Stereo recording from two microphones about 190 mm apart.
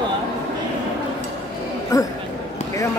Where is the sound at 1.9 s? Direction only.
20° left (ahead or behind).